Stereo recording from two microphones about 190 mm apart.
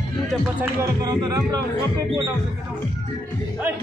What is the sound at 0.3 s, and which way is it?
Speech, 10° right (ahead or behind).